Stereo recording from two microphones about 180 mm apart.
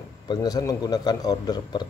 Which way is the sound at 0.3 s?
20° left (ahead or behind).